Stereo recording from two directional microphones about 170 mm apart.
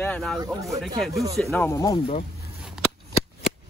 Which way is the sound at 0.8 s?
Centre (ahead or behind).